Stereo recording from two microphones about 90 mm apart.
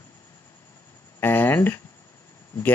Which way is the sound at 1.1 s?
25° left (ahead or behind).